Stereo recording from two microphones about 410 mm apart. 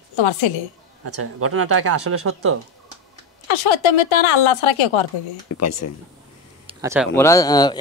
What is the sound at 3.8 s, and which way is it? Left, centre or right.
A woman's voice, left.